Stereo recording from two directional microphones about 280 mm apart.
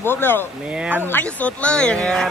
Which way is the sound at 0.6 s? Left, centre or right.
Centre.